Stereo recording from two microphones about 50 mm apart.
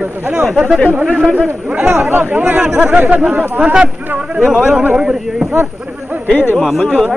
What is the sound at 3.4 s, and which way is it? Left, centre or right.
Speech, right.